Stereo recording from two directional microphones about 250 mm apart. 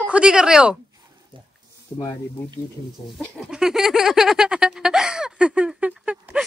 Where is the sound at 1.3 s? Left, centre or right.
Centre.